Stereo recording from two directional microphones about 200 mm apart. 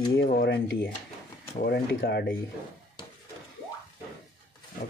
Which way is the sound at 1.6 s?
60° left (ahead or behind).